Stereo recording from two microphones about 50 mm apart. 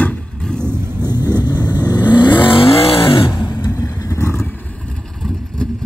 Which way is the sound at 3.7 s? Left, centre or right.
Left.